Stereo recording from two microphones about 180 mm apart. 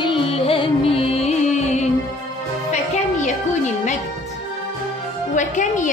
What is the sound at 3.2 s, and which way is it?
Music, 40° left (ahead or behind).